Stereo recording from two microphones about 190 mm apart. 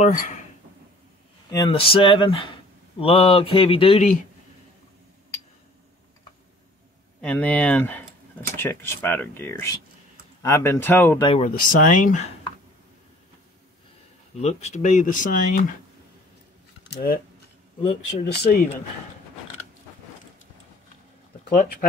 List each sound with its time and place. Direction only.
0.0 s speech: 45° left (ahead or behind)
1.5 s speech: 25° left (ahead or behind)
7.2 s speech: 5° left (ahead or behind)
11.2 s speech: 35° left (ahead or behind)
14.4 s speech: 35° left (ahead or behind)
16.9 s speech: 50° left (ahead or behind)
18.4 s speech: 55° left (ahead or behind)